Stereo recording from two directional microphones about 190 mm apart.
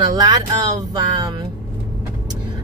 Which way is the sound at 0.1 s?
20° right (ahead or behind).